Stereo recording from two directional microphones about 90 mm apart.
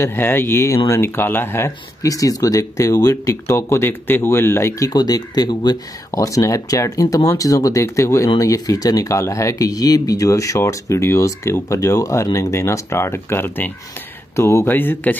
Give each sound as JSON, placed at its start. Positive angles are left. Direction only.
{"t": 0.0, "sound": "speech", "side_deg": 25}
{"t": 2.0, "sound": "speech", "side_deg": 40}
{"t": 4.9, "sound": "speech", "side_deg": 45}
{"t": 6.1, "sound": "speech", "side_deg": 40}